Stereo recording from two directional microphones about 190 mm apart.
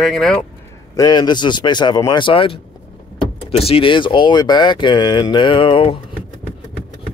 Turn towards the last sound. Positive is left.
turn(degrees=30)  # may be behind; listen again after turning